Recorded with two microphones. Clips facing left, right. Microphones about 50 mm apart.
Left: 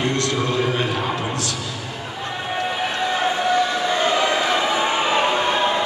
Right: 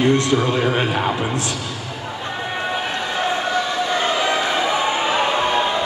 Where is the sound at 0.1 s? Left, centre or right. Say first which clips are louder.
Right 4 dB; right.